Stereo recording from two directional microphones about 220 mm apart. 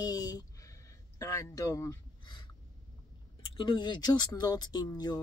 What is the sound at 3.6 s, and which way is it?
Speech, 20° left (ahead or behind).